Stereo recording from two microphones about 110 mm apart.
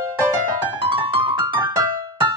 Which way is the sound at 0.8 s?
50° right (ahead or behind).